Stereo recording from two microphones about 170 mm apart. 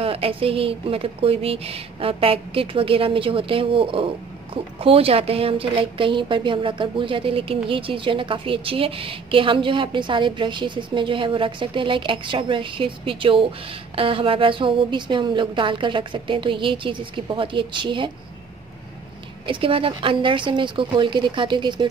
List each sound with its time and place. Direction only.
0.0 s a woman's voice: 35° right (ahead or behind)
19.4 s a woman's voice: 30° right (ahead or behind)